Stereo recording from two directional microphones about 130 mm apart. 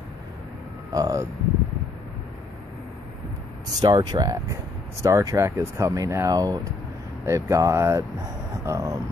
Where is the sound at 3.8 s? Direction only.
35° right (ahead or behind).